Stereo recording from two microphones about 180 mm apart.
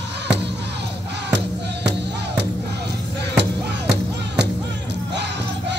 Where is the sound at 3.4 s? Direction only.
70° right (ahead or behind).